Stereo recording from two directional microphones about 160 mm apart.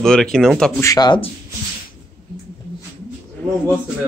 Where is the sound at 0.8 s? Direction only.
25° left (ahead or behind).